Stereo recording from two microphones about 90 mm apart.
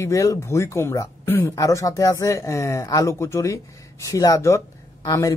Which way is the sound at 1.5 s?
40° left (ahead or behind).